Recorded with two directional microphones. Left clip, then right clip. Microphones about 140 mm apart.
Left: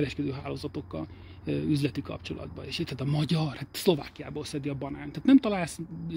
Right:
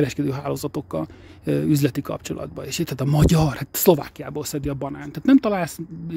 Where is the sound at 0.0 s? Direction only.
45° right (ahead or behind).